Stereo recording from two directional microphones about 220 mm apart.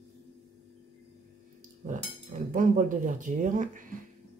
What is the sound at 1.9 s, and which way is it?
Speech, 35° right (ahead or behind).